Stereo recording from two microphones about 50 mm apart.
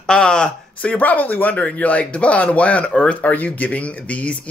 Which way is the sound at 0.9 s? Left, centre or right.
Left.